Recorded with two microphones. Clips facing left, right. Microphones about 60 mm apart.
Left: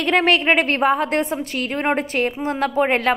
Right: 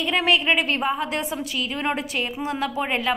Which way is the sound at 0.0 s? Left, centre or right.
Left.